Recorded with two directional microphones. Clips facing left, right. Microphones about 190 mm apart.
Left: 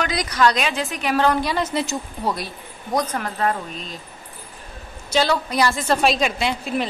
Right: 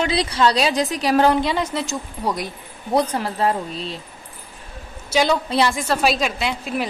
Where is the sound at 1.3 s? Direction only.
20° right (ahead or behind).